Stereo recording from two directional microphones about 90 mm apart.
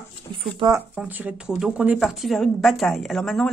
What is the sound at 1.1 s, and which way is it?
Speech, 20° right (ahead or behind).